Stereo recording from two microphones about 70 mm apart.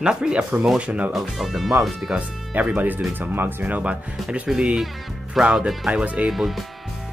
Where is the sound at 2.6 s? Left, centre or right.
Right.